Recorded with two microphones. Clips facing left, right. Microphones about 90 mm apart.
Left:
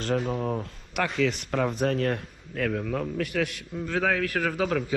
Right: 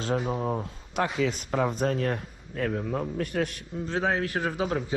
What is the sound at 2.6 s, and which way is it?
Speech, 20° right (ahead or behind).